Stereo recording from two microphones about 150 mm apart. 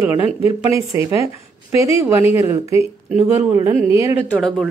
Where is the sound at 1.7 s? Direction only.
20° right (ahead or behind).